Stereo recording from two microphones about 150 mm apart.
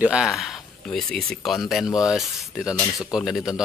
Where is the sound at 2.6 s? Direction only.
25° left (ahead or behind).